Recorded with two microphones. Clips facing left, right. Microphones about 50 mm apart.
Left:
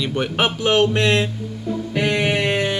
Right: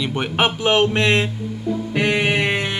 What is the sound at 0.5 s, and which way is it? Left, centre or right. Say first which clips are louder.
Music: left 2 dB; right.